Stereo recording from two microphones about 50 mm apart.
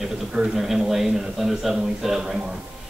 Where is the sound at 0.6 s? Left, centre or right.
Centre.